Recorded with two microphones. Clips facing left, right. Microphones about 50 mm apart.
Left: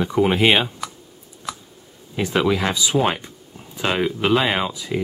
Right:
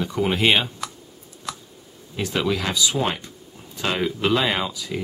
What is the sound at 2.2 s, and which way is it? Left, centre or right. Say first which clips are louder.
Speech: left 4 dB; centre.